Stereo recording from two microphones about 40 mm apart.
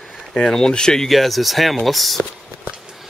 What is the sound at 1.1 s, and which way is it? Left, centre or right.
Speech, centre.